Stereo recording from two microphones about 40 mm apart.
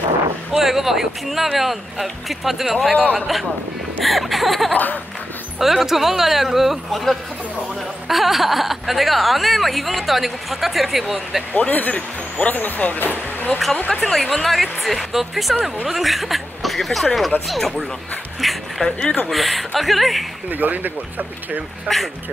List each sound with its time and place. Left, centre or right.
0.5 s speech: centre
4.7 s speech: left
5.6 s speech: centre
11.5 s speech: left
13.9 s speech: centre
18.9 s speech: left
19.3 s speech: centre
20.4 s speech: right
21.8 s speech: centre